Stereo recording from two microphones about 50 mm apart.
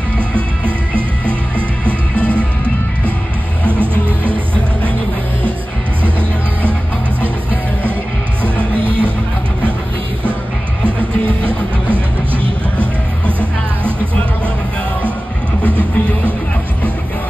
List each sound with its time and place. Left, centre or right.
1.9 s music: left
3.7 s music: right
10.8 s music: left